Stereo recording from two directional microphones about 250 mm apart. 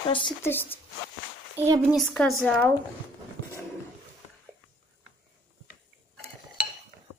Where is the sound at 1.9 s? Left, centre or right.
Centre.